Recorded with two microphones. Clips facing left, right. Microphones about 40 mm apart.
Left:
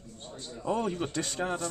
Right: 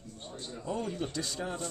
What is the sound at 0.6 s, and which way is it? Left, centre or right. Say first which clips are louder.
A man's voice: left 5 dB; left.